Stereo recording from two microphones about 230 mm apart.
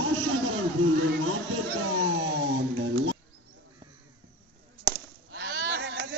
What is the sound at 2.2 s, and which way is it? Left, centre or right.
Music, right.